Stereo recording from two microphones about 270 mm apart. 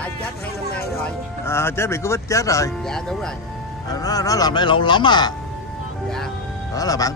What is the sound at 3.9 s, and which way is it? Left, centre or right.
A man's voice, centre.